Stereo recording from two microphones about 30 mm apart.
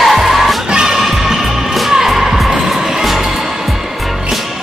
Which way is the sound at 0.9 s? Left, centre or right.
Centre.